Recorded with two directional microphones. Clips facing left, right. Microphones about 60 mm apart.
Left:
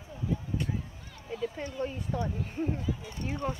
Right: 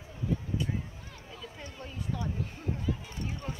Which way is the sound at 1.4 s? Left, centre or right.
Left.